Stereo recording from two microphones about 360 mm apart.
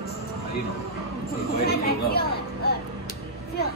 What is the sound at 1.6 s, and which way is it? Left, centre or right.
Music, left.